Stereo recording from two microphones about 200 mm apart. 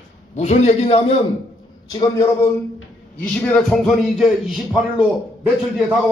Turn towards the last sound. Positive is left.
turn(degrees=-5)  # may be behind; listen again after turning